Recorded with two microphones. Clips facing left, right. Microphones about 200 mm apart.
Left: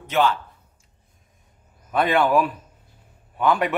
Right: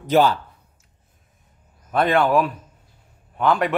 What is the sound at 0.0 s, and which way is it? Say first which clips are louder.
Speech: right 4 dB; 35° right (ahead or behind).